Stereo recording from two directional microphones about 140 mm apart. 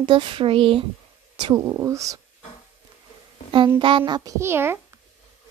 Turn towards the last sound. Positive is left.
turn(degrees=-15)  # may be behind; listen again after turning